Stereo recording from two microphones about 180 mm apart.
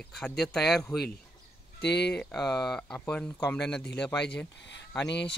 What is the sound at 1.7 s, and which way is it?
Speech, 70° left (ahead or behind).